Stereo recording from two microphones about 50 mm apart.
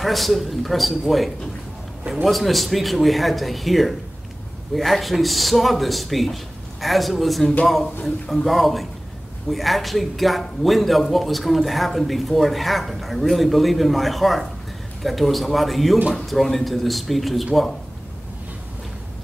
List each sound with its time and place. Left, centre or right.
0.0 s a man's voice: centre